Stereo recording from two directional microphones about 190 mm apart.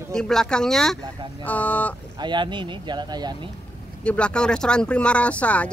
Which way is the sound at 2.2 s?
25° right (ahead or behind).